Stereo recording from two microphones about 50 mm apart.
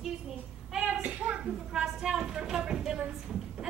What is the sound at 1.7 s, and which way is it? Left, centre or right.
A woman's voice, centre.